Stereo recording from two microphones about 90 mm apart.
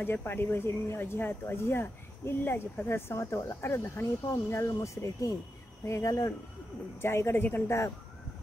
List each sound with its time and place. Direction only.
0.0 s speech: 25° left (ahead or behind)
7.0 s speech: 30° left (ahead or behind)